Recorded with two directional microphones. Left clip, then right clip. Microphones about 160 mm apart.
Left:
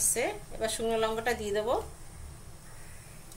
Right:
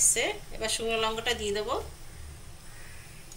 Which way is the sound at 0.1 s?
60° left (ahead or behind).